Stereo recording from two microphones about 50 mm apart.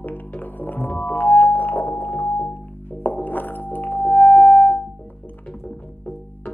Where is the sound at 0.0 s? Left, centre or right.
Left.